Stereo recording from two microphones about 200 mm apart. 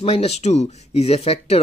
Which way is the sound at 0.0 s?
30° left (ahead or behind).